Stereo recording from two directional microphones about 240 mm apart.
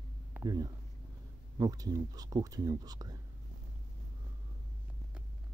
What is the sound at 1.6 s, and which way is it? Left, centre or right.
Speech, centre.